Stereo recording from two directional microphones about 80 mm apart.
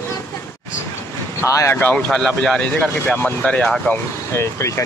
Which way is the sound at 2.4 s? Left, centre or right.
Centre.